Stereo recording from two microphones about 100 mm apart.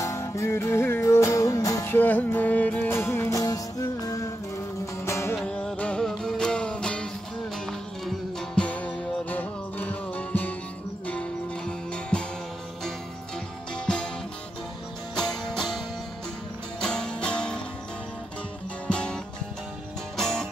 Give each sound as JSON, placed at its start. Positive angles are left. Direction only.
{"t": 0.0, "sound": "music", "side_deg": 30}
{"t": 1.9, "sound": "music", "side_deg": 20}
{"t": 3.3, "sound": "music", "side_deg": 35}
{"t": 5.4, "sound": "music", "side_deg": 10}
{"t": 13.7, "sound": "music", "side_deg": 10}
{"t": 15.1, "sound": "music", "side_deg": 5}
{"t": 16.8, "sound": "music", "side_deg": 10}
{"t": 18.9, "sound": "music", "side_deg": 10}